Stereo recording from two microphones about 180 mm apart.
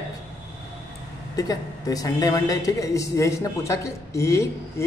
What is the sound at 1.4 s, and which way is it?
A woman's voice, 20° left (ahead or behind).